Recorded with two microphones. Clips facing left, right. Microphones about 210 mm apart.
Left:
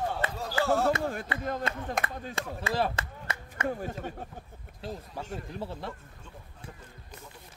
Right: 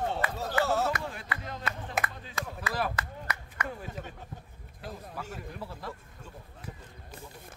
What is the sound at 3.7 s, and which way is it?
Speech, 45° left (ahead or behind).